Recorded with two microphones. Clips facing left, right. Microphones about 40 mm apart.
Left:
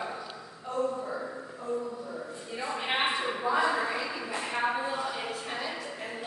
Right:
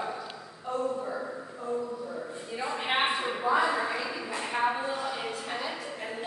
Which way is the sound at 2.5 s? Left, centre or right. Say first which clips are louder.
Right 1 dB; centre.